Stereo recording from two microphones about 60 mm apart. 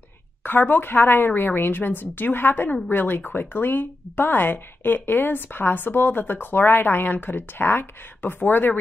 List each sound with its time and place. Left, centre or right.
0.4 s a woman's voice: left